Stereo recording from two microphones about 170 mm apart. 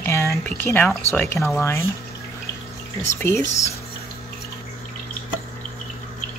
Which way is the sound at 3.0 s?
15° left (ahead or behind).